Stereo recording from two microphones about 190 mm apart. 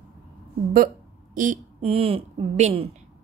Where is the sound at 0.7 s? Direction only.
45° right (ahead or behind).